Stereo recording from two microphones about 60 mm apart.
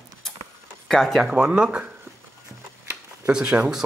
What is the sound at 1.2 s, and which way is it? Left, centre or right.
Speech, centre.